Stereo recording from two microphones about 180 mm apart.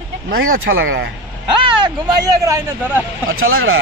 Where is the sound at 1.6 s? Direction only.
25° right (ahead or behind).